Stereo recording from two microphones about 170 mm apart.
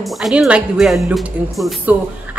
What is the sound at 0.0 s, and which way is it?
A woman's voice, centre (ahead or behind).